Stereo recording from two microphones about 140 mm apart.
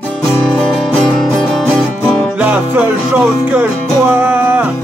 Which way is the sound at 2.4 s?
15° right (ahead or behind).